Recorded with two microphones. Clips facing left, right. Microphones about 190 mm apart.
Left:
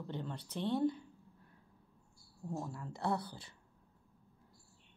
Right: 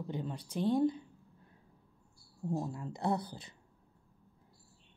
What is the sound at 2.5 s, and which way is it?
A woman's voice, 20° right (ahead or behind).